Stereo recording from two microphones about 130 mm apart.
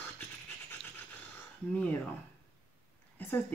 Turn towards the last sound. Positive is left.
turn(degrees=15)  # may be behind; listen again after turning